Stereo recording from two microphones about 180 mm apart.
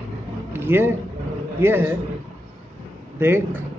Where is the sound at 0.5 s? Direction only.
10° right (ahead or behind).